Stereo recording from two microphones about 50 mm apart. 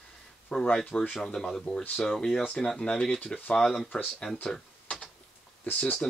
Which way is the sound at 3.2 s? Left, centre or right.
Left.